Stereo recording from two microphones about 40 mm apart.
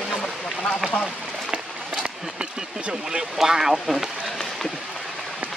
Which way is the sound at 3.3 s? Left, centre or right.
Centre.